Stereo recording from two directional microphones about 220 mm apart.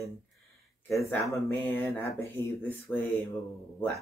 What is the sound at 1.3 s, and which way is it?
Speech, 10° left (ahead or behind).